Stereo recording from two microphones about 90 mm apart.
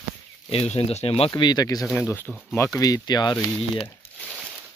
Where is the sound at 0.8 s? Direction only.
75° left (ahead or behind).